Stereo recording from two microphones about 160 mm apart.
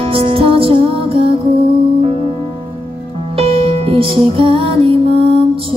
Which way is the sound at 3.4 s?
35° right (ahead or behind).